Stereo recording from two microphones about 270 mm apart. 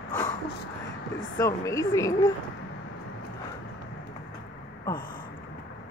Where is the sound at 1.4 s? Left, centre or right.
Centre.